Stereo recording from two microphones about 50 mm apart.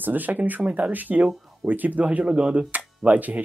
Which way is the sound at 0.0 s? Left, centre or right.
Right.